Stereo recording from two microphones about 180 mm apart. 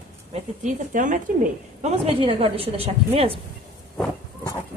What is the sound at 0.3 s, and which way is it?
A woman's voice, 45° right (ahead or behind).